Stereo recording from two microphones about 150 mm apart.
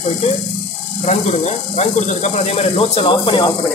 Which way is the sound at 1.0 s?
50° left (ahead or behind).